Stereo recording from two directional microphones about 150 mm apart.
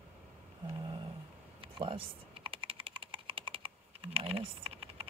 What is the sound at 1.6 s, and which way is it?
Typing, 35° right (ahead or behind).